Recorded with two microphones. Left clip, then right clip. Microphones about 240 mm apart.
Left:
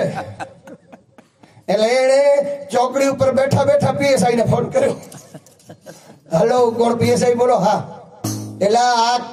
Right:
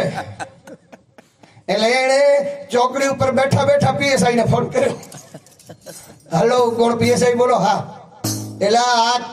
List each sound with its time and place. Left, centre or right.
0.1 s chuckle: centre
1.8 s music: right
5.3 s a sound: centre
6.3 s music: right
8.2 s music: centre
8.5 s music: right